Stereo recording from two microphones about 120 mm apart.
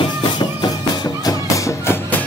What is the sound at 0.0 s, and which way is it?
Music, 35° left (ahead or behind).